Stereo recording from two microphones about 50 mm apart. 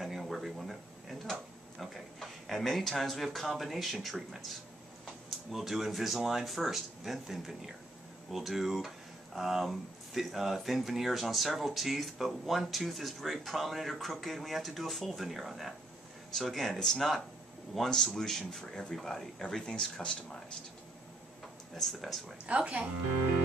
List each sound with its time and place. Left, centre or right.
0.0 s a sound: centre
5.5 s a man's voice: centre
21.7 s speech: centre
22.5 s speech: right